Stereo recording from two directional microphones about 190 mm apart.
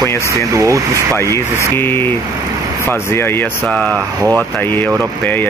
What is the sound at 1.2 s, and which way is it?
Speech, 15° left (ahead or behind).